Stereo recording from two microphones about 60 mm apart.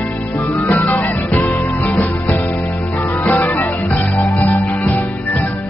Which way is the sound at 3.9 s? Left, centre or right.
Left.